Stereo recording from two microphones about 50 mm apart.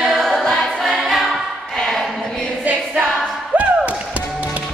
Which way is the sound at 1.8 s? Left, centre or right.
Centre.